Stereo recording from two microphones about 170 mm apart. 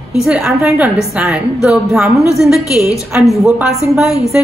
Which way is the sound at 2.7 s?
20° left (ahead or behind).